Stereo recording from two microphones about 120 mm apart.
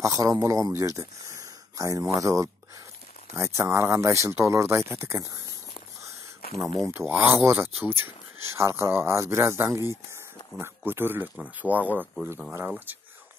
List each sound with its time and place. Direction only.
0.0 s a man's voice: 30° right (ahead or behind)
6.9 s speech: 20° right (ahead or behind)